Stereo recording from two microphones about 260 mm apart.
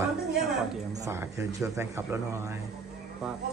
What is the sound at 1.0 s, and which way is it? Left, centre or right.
A man's voice, centre.